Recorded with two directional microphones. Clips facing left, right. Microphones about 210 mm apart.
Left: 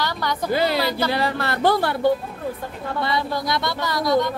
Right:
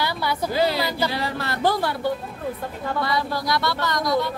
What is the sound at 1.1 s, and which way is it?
Speech, 60° left (ahead or behind).